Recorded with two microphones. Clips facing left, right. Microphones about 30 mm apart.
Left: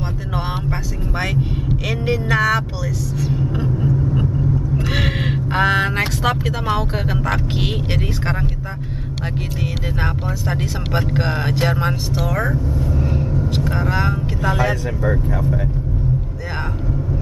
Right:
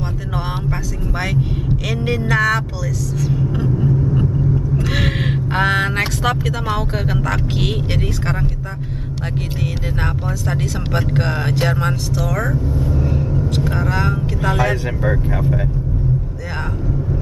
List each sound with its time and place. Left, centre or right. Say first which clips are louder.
1.9 s speech: even; centre
3.2 s vehicle: right 2 dB; centre
4.8 s vehicle: right 1 dB; centre
6.7 s speech: left 1 dB; centre
9.6 s speech: even; centre
12.3 s speech: left 1 dB; centre
12.9 s vehicle: right 1 dB; centre
13.7 s speech: even; centre
14.4 s speech: right 1 dB; centre
15.0 s speech: right 1 dB; centre